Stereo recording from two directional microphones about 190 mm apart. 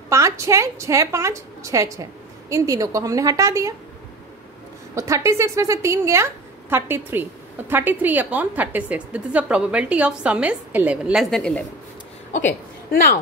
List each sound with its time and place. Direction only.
0.1 s a woman's voice: 15° right (ahead or behind)
4.9 s a woman's voice: 15° right (ahead or behind); by 11.6 s 5° left (ahead or behind)
12.9 s a man's voice: 50° left (ahead or behind)